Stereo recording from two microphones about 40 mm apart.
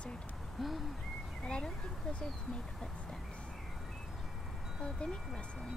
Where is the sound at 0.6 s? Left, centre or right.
Centre.